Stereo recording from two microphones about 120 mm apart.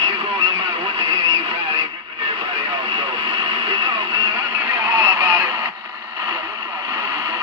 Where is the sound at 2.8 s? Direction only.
50° right (ahead or behind).